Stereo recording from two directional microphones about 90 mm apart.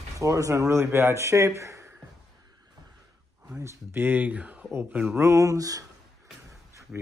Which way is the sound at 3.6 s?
25° right (ahead or behind).